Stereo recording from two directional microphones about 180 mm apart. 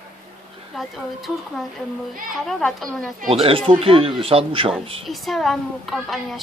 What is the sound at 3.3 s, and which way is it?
Speech, 30° right (ahead or behind).